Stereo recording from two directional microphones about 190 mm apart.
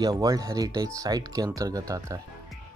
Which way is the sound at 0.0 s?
20° right (ahead or behind).